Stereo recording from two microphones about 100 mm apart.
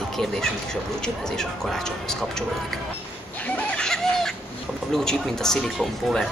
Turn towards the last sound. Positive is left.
turn(degrees=5)  # may be behind; listen again after turning